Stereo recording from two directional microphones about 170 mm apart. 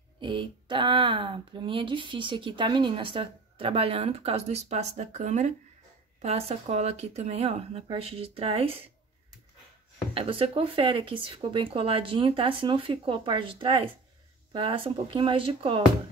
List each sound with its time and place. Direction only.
0.2 s speech: 30° right (ahead or behind)
10.1 s speech: 30° right (ahead or behind)